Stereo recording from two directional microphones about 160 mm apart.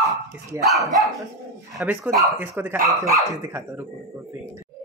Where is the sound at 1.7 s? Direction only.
5° right (ahead or behind).